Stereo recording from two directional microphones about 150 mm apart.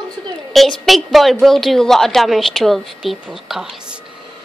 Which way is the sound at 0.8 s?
Centre (ahead or behind).